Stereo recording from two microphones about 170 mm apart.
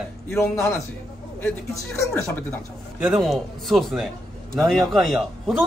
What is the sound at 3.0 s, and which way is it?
A man's voice, centre (ahead or behind).